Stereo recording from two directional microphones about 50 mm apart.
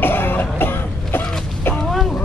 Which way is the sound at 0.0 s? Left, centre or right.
Left.